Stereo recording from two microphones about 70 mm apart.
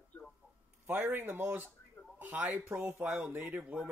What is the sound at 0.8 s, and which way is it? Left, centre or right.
Speech, right.